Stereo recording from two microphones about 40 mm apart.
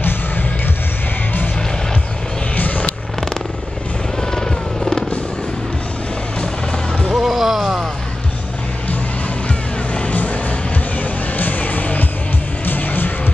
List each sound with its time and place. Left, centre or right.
2.5 s fireworks: left
4.2 s helicopter: centre
7.2 s music: centre
9.9 s music: left